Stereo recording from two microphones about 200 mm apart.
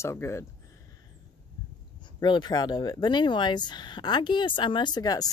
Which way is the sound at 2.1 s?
20° left (ahead or behind).